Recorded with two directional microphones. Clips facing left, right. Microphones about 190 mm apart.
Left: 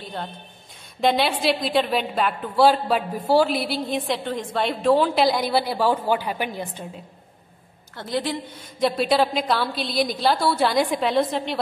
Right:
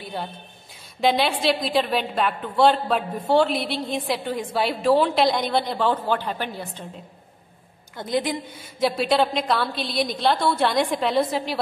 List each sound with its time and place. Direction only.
0.0 s a sound: 10° right (ahead or behind)
1.0 s a woman's voice: centre (ahead or behind)
8.0 s a woman's voice: 15° right (ahead or behind)
8.7 s a woman's voice: centre (ahead or behind)